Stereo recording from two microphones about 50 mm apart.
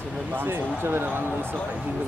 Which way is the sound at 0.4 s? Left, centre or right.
Right.